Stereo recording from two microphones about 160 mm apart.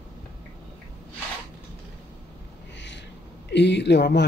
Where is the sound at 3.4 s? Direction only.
90° left.